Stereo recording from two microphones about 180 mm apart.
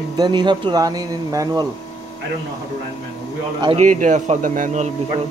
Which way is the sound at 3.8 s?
45° right (ahead or behind).